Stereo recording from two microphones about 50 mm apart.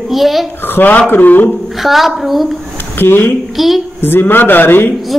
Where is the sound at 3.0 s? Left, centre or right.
Left.